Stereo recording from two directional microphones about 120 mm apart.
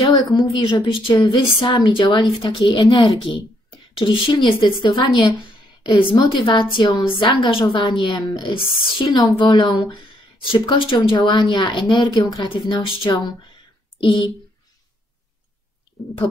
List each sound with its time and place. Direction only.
0.0 s a woman's voice: 35° left (ahead or behind)
12.4 s speech: 40° left (ahead or behind)